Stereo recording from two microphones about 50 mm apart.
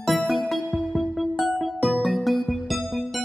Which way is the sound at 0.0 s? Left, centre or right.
Centre.